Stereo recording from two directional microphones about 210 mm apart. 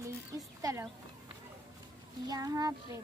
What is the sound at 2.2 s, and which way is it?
Speech, 15° right (ahead or behind).